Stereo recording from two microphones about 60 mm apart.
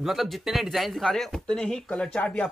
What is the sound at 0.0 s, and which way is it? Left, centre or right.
Speech, centre.